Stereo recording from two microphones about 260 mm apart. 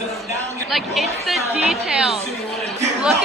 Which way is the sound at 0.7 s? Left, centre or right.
Centre.